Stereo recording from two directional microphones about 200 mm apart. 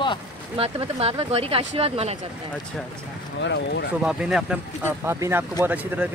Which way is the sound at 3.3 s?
60° left (ahead or behind).